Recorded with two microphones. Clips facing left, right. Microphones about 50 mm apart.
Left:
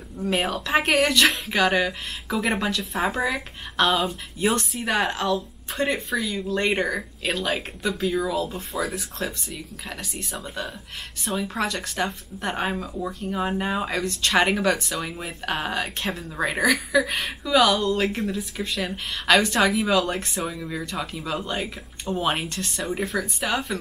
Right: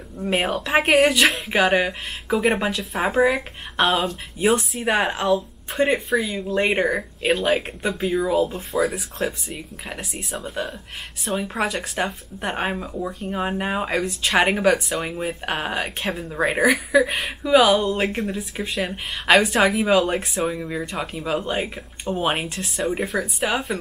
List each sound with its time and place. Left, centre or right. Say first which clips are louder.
0.5 s speech: right 5 dB; centre
4.4 s speech: right 4 dB; centre
4.8 s speech: right 3 dB; centre
8.5 s speech: right 5 dB; centre
11.3 s speech: right 2 dB; centre
22.3 s speech: right 2 dB; centre